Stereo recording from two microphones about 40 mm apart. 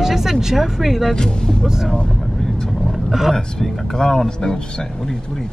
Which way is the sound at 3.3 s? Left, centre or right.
Centre.